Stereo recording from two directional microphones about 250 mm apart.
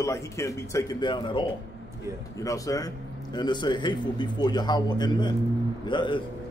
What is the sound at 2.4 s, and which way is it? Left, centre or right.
A man's voice, centre.